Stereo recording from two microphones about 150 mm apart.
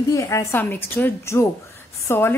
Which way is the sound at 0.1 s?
20° left (ahead or behind).